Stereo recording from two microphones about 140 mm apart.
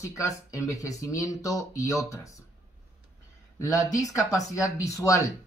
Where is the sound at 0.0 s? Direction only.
25° left (ahead or behind).